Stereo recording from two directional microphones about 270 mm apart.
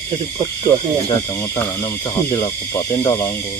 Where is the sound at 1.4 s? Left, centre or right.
Centre.